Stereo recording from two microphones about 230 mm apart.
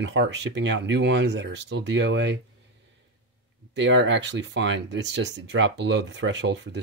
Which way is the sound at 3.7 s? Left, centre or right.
Right.